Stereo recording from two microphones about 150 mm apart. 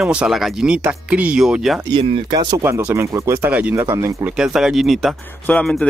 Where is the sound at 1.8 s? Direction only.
35° right (ahead or behind).